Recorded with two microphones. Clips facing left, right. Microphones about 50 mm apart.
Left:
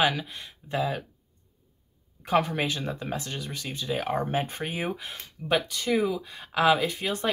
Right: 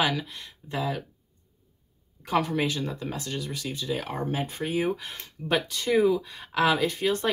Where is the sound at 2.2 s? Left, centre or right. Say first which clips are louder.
Left 1 dB; left.